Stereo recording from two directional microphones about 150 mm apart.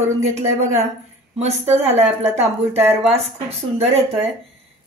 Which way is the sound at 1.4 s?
45° right (ahead or behind).